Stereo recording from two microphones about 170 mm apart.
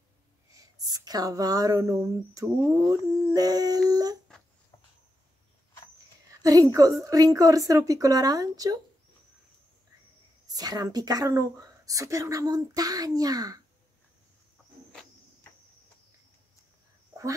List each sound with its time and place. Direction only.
0.5 s speech: 20° right (ahead or behind)
6.4 s speech: 20° right (ahead or behind)
10.5 s speech: 20° right (ahead or behind)